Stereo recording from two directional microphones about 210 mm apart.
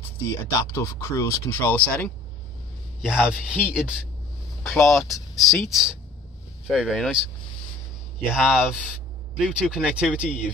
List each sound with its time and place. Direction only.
0.2 s speech: 15° left (ahead or behind)
8.2 s speech: 5° right (ahead or behind)